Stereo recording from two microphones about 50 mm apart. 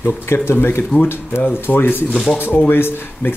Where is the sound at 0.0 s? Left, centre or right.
Left.